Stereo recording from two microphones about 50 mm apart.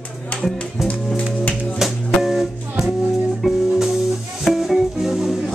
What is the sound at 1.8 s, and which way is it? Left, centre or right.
Music, centre.